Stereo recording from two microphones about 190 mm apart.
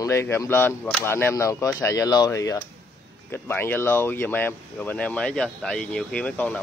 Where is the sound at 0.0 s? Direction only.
15° left (ahead or behind).